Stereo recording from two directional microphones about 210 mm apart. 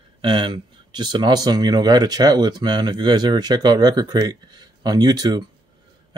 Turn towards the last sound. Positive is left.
turn(degrees=-20)  # may be behind; listen again after turning